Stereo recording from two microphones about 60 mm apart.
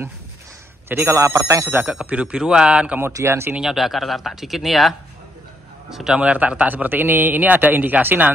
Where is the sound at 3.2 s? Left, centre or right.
Right.